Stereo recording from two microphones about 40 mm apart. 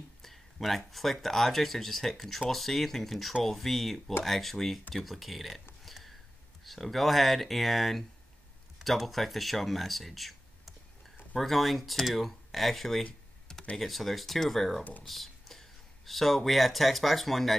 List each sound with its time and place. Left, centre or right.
0.2 s speech: centre
5.9 s a sound: centre
6.6 s speech: centre
14.8 s speech: left
15.0 s a sound: centre
16.1 s speech: centre